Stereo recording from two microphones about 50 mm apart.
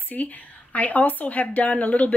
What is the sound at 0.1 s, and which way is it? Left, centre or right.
A woman's voice, left.